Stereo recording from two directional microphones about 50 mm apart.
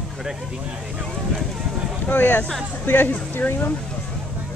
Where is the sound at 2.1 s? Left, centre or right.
Left.